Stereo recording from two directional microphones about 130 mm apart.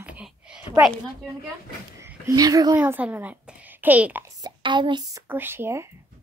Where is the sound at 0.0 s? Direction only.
10° right (ahead or behind).